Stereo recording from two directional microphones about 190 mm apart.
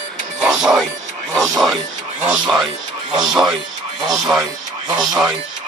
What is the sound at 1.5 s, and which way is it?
Speech, centre (ahead or behind).